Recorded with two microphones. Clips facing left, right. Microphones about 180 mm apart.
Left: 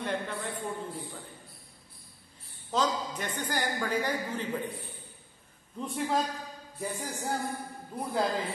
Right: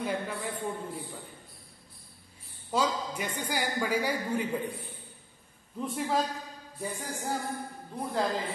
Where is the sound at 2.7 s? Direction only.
10° right (ahead or behind).